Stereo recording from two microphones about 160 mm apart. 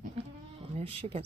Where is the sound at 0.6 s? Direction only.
35° right (ahead or behind).